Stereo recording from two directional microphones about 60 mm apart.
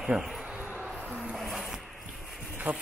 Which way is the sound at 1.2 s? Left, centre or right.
Centre.